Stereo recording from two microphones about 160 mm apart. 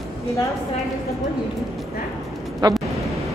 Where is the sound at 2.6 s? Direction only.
25° right (ahead or behind).